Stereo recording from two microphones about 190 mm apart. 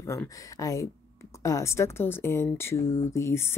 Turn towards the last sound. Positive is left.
turn(degrees=15)  # may be behind; listen again after turning